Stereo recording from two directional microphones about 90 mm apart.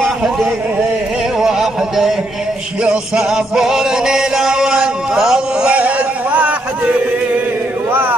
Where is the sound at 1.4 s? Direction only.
5° right (ahead or behind).